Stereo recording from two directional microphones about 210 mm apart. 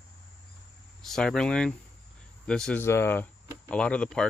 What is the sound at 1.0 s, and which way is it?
Speech, 5° left (ahead or behind).